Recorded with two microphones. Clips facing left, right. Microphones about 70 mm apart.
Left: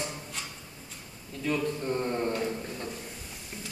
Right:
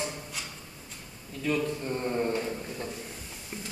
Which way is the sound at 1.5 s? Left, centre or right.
Centre.